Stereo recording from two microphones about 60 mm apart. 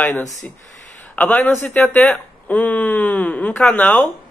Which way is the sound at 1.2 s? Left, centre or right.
Left.